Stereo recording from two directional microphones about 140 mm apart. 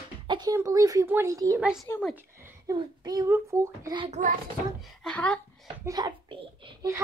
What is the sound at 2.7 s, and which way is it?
Speech, 30° right (ahead or behind).